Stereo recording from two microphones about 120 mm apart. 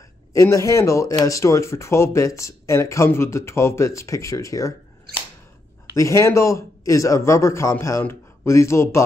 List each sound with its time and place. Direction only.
0.3 s speech: 25° left (ahead or behind)
5.9 s speech: 25° left (ahead or behind)